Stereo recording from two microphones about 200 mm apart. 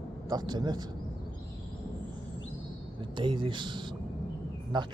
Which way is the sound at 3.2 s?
25° right (ahead or behind).